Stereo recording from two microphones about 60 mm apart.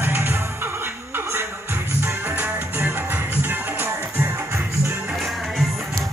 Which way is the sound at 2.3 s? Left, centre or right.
Right.